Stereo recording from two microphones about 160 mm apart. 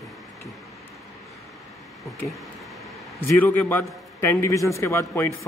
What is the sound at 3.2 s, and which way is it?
A man's voice, 10° left (ahead or behind).